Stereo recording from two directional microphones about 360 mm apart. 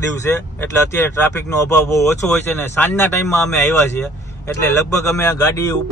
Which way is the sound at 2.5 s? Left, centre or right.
Centre.